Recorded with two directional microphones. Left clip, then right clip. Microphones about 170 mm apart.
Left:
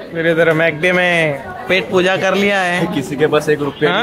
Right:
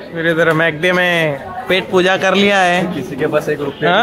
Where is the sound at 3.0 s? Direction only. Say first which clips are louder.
Left 2 dB; 30° left (ahead or behind).